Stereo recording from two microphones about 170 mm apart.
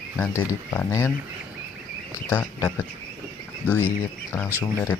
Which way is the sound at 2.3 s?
15° left (ahead or behind).